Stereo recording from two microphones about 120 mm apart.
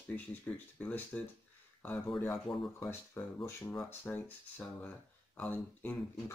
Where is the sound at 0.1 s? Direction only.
15° left (ahead or behind).